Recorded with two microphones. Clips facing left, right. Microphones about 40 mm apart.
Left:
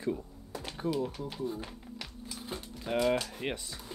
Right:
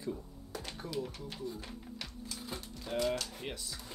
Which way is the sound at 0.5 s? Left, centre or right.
Left.